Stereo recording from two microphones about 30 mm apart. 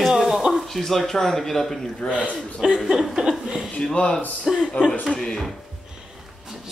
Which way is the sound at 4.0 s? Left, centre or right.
Left.